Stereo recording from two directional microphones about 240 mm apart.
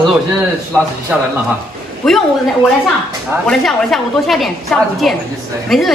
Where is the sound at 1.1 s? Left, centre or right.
Centre.